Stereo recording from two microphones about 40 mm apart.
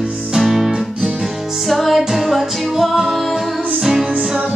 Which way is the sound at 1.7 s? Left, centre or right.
Centre.